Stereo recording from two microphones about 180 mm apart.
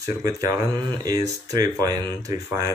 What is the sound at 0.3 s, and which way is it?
Speech, 20° right (ahead or behind).